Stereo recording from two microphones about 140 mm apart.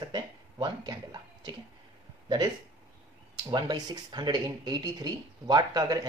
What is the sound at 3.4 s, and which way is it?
Speech, 30° right (ahead or behind).